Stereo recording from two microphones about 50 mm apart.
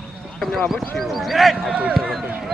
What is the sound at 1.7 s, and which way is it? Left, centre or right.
Speech, right.